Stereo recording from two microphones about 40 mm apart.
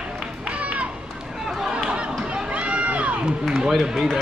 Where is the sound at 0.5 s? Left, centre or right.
Right.